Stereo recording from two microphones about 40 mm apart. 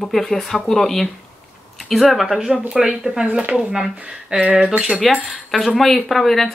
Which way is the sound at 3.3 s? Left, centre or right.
Right.